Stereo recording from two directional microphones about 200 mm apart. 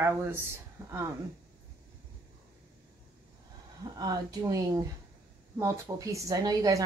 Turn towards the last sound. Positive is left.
turn(degrees=-15)  # may be behind; listen again after turning